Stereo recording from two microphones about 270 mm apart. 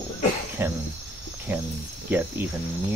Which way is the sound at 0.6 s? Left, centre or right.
Centre.